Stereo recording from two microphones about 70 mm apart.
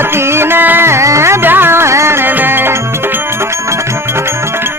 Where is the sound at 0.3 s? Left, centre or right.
Right.